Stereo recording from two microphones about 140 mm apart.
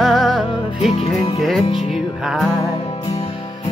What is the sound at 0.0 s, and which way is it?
Music, centre (ahead or behind).